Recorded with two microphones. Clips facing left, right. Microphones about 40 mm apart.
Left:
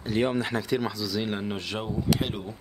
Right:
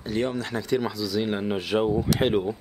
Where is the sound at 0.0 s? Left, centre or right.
Centre.